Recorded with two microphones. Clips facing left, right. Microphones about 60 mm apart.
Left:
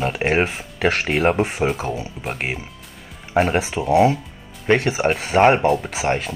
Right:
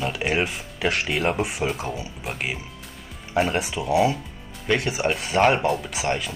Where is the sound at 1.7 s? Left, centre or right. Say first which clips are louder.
Left 4 dB; centre.